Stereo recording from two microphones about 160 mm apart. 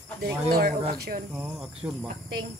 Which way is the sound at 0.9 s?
65° right (ahead or behind).